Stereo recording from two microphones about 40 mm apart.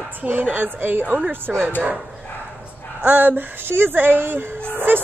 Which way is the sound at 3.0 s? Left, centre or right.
Right.